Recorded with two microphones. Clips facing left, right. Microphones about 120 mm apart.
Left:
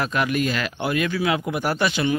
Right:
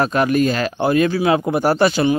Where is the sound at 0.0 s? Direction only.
35° right (ahead or behind).